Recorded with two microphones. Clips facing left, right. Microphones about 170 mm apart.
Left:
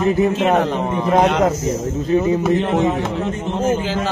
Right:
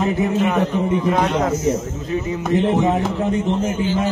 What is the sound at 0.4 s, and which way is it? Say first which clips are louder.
A man's voice: left 2 dB; 90° left.